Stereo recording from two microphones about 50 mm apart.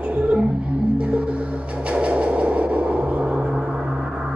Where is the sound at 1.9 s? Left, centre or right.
Right.